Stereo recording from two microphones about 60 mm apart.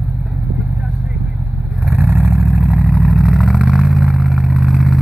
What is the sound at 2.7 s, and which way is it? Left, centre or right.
Vehicle, centre.